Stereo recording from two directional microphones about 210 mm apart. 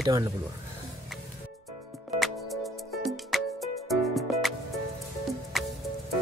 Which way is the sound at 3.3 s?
Centre (ahead or behind).